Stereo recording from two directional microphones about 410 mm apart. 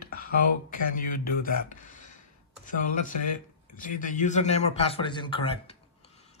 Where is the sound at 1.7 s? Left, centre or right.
Centre.